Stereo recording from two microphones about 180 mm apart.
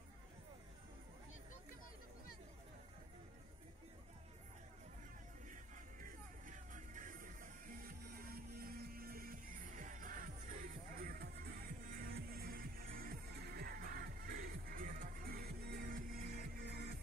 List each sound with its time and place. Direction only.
5.5 s music: 50° right (ahead or behind)